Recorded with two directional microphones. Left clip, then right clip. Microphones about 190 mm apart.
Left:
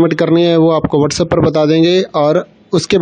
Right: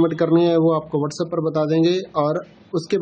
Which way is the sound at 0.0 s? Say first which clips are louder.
Left 6 dB; 45° left (ahead or behind).